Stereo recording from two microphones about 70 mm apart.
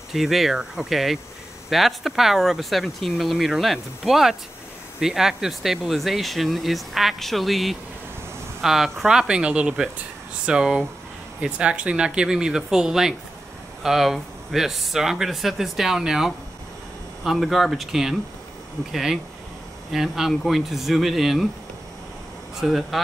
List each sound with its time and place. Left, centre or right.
0.1 s speech: centre
22.6 s speech: centre